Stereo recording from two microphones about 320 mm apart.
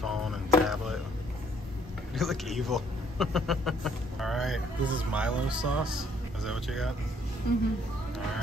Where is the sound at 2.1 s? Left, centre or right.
Centre.